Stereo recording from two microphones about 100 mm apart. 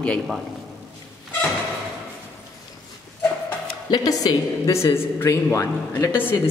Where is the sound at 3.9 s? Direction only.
40° left (ahead or behind); by 6.4 s 20° left (ahead or behind).